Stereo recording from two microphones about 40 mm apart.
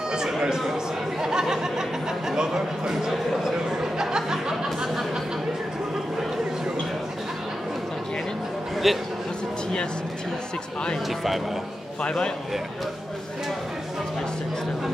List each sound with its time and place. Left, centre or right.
1.2 s speech: centre
3.1 s music: centre
4.8 s a sound: centre
8.8 s speech: centre
11.1 s speech: centre
12.0 s a man's voice: left